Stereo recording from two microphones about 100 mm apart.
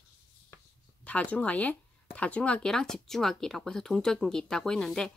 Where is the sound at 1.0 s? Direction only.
15° left (ahead or behind).